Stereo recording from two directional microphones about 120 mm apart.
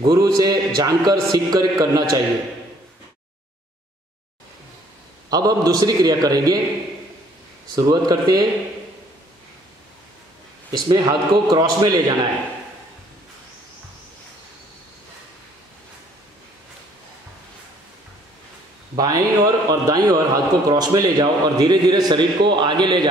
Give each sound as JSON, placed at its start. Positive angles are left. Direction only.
{"t": 0.1, "sound": "a man's voice", "side_deg": -30}
{"t": 5.3, "sound": "a man's voice", "side_deg": -30}
{"t": 7.7, "sound": "a man's voice", "side_deg": -30}
{"t": 10.7, "sound": "a man's voice", "side_deg": -30}
{"t": 18.9, "sound": "a man's voice", "side_deg": -30}